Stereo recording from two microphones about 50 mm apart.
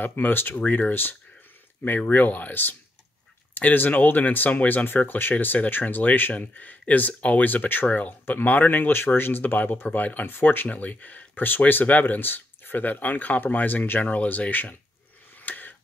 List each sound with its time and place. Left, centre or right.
0.0 s speech: left
9.4 s speech: left
15.4 s a sound: left